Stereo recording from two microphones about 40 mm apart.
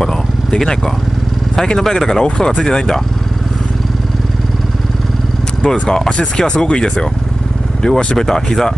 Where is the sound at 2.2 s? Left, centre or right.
Left.